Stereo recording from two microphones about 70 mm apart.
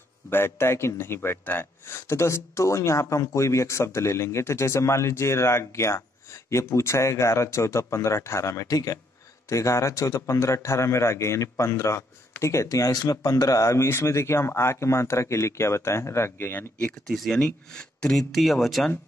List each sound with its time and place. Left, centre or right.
0.3 s speech: left
2.0 s speech: left
12.9 s speech: left
17.1 s speech: centre
17.4 s speech: centre
18.3 s speech: centre